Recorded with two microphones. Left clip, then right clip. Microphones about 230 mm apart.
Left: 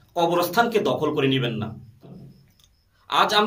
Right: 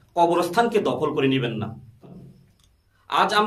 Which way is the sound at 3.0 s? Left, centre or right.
Centre.